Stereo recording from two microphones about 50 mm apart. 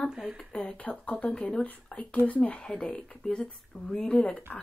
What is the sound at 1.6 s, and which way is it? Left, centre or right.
Speech, left.